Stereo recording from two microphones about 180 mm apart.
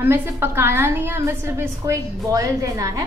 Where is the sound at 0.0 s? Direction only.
10° right (ahead or behind).